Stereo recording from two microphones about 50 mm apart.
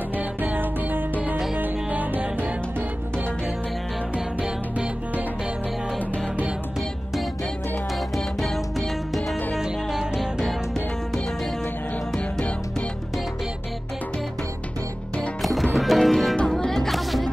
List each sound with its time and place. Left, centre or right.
0.2 s music: right
8.2 s music: centre
9.6 s music: centre
12.2 s music: left
15.7 s music: centre